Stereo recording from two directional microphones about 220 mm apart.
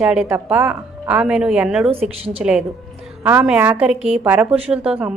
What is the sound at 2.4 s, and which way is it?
A woman's voice, 5° right (ahead or behind).